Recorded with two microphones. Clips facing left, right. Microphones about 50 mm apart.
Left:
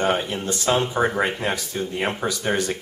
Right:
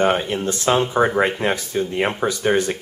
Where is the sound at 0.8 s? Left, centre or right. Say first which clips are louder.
Right 4 dB; centre.